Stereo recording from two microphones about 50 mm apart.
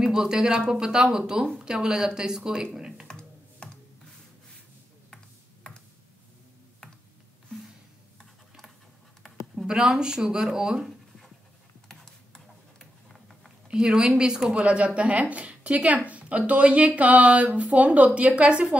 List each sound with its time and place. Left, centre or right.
0.0 s speech: centre
3.1 s computer keyboard: centre
9.7 s speech: centre
11.9 s a sound: centre
13.7 s a woman's voice: centre